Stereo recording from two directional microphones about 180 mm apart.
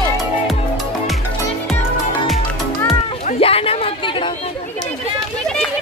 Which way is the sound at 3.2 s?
30° left (ahead or behind).